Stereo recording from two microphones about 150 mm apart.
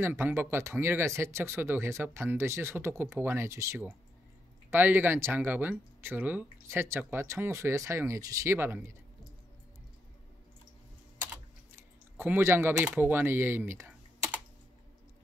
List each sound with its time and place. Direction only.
0.0 s speech: 15° right (ahead or behind)
11.7 s a sound: 15° right (ahead or behind)
12.7 s speech: 10° right (ahead or behind)